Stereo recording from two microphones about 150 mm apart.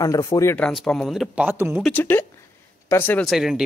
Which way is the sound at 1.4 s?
15° right (ahead or behind).